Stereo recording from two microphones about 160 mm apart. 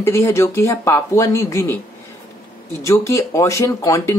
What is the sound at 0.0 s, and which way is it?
Speech, 15° left (ahead or behind).